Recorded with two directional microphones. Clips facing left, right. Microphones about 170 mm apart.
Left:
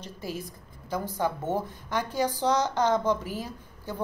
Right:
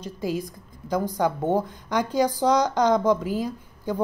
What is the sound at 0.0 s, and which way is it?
A woman's voice, 15° right (ahead or behind).